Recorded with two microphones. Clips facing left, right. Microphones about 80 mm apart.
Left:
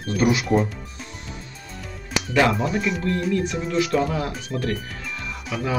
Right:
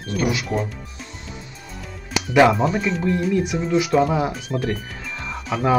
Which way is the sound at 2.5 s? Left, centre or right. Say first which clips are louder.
Right 3 dB; centre.